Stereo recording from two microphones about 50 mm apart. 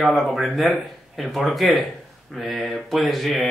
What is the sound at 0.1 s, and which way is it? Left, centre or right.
Speech, centre.